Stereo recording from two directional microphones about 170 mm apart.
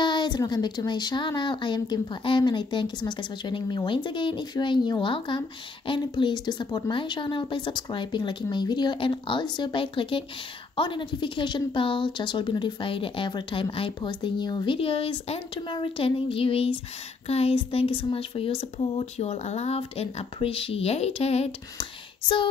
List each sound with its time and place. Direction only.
0.0 s speech: 25° left (ahead or behind)